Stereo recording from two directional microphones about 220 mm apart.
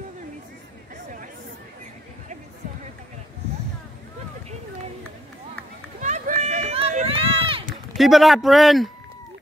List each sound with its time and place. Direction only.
5.9 s run: 35° right (ahead or behind)
8.0 s a man's voice: centre (ahead or behind)